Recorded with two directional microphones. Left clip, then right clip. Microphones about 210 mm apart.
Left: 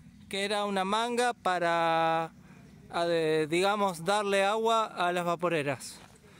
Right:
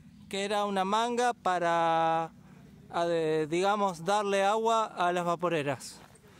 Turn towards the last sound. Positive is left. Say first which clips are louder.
# even
turn(degrees=0)  # may be behind; listen again after turning